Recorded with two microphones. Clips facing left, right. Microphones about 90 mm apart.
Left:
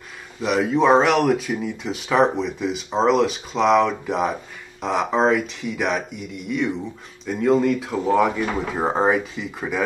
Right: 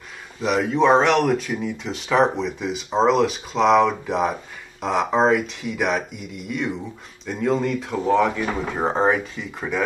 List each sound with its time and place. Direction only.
0.4 s speech: centre (ahead or behind)